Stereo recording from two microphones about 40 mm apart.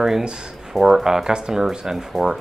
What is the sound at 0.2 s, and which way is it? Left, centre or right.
Speech, right.